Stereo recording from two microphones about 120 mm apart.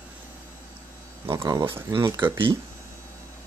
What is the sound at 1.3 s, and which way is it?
Speech, 25° right (ahead or behind).